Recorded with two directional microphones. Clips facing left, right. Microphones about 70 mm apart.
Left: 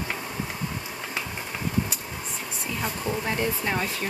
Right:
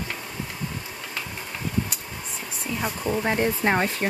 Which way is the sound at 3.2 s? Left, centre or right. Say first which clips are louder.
Right 6 dB; right.